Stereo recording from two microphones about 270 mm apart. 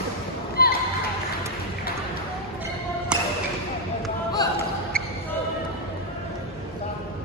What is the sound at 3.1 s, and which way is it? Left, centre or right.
Basketball bounce, centre.